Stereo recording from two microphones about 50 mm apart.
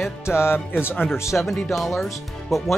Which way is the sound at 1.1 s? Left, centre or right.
Left.